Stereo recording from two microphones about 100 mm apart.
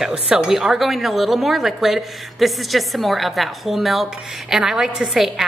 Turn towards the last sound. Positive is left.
turn(degrees=-5)  # may be behind; listen again after turning